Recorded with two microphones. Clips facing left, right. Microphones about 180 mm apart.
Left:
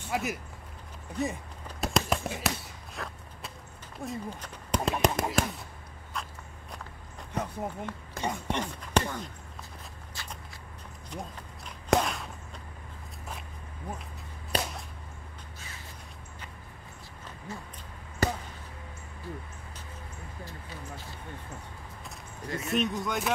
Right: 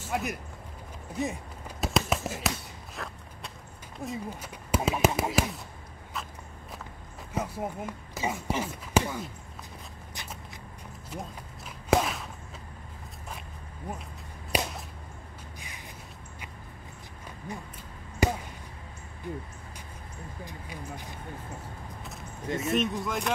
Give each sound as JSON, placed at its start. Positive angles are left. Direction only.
{"t": 0.0, "sound": "speech", "side_deg": 0}
{"t": 1.1, "sound": "a sound", "side_deg": 0}
{"t": 4.0, "sound": "speech", "side_deg": -5}
{"t": 6.2, "sound": "walk", "side_deg": 0}
{"t": 7.3, "sound": "speech", "side_deg": -5}
{"t": 10.2, "sound": "a sound", "side_deg": -20}
{"t": 11.1, "sound": "walk", "side_deg": -5}
{"t": 14.5, "sound": "whip", "side_deg": -10}
{"t": 17.5, "sound": "a sound", "side_deg": -15}
{"t": 18.2, "sound": "basketball bounce", "side_deg": -10}
{"t": 19.2, "sound": "vehicle", "side_deg": -20}
{"t": 20.4, "sound": "a sound", "side_deg": -15}
{"t": 22.6, "sound": "speech", "side_deg": 0}